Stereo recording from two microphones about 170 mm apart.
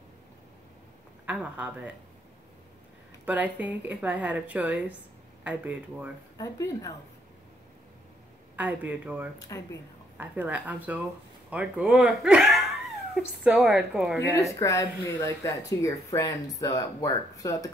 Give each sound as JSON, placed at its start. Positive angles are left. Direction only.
{"t": 1.2, "sound": "a woman's voice", "side_deg": -10}
{"t": 3.3, "sound": "a woman's voice", "side_deg": -10}
{"t": 6.3, "sound": "speech", "side_deg": 20}
{"t": 8.5, "sound": "a woman's voice", "side_deg": -10}
{"t": 9.5, "sound": "speech", "side_deg": 20}
{"t": 10.1, "sound": "a woman's voice", "side_deg": -10}
{"t": 14.1, "sound": "speech", "side_deg": 15}